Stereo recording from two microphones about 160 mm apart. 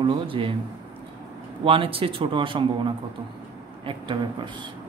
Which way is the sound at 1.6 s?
35° right (ahead or behind).